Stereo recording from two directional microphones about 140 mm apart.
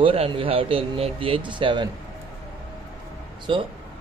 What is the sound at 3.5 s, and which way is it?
Speech, 40° right (ahead or behind).